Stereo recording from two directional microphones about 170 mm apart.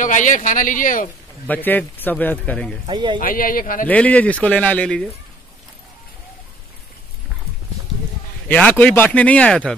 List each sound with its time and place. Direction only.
0.0 s speech: 50° left (ahead or behind)
1.5 s speech: 10° left (ahead or behind)
2.9 s speech: 25° right (ahead or behind)
3.2 s speech: 55° left (ahead or behind)
3.8 s speech: 10° left (ahead or behind)
8.5 s speech: 10° left (ahead or behind)